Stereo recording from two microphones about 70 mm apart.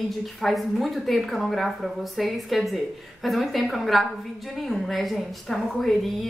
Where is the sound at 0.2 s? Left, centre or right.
Centre.